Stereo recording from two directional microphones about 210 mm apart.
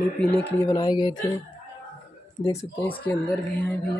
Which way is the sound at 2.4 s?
10° left (ahead or behind).